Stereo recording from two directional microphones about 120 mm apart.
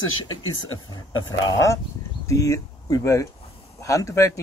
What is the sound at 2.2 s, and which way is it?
Speech, 25° left (ahead or behind).